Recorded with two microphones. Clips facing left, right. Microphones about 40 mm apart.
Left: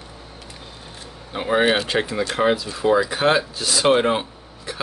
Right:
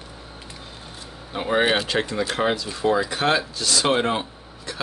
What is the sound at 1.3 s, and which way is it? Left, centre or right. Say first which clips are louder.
Speech: left 2 dB; centre.